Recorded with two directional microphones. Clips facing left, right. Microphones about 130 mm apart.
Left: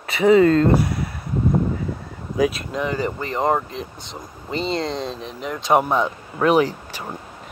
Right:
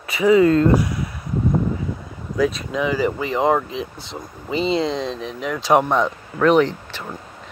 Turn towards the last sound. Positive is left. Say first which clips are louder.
# right 1 dB
turn(degrees=10)  # may be behind; listen again after turning